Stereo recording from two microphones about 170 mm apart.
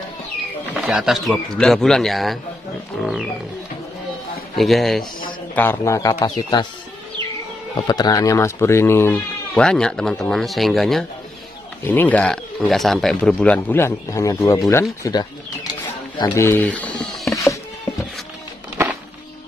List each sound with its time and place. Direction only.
0.7 s speech: centre (ahead or behind)
4.6 s speech: centre (ahead or behind)
5.5 s speech: 10° left (ahead or behind)
7.7 s speech: 25° left (ahead or behind); by 17.4 s centre (ahead or behind)